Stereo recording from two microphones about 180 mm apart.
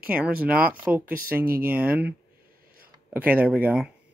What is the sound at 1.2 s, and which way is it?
Speech, 55° right (ahead or behind).